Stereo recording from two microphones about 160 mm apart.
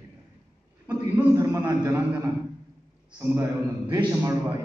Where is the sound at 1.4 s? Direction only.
20° right (ahead or behind).